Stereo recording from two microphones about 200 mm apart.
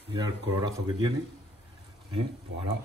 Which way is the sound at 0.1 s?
20° right (ahead or behind).